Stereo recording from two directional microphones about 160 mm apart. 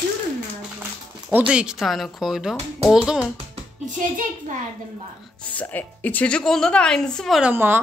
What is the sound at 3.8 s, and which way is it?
Speech, 50° right (ahead or behind).